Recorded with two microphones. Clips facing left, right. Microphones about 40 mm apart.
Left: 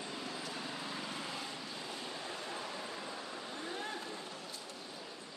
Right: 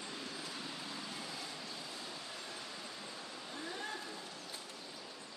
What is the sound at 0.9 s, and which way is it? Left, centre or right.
Vehicle, left.